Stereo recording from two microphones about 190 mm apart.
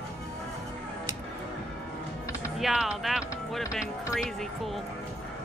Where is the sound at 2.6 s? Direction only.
5° right (ahead or behind).